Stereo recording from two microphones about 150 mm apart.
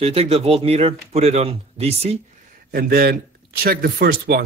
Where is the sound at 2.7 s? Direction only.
85° right.